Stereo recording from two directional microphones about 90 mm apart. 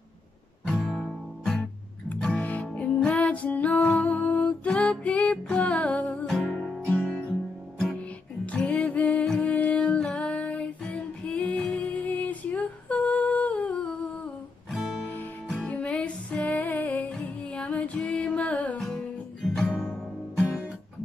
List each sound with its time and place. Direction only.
0.7 s music: centre (ahead or behind)
2.2 s music: 15° left (ahead or behind)
8.5 s music: 15° left (ahead or behind)
14.7 s guitar: 5° right (ahead or behind)
15.6 s music: 15° left (ahead or behind)
19.4 s music: 5° left (ahead or behind)